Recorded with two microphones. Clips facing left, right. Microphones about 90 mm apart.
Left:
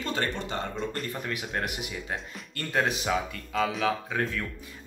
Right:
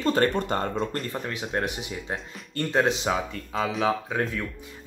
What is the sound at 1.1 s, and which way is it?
Speech, 30° right (ahead or behind).